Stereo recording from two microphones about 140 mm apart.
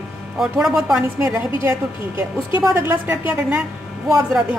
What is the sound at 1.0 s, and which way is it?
A woman's voice, 20° right (ahead or behind).